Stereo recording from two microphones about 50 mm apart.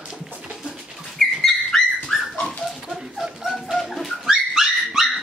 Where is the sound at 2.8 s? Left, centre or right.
Centre.